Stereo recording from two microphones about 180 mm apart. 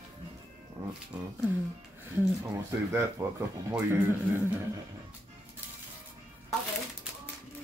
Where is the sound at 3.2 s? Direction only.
10° right (ahead or behind).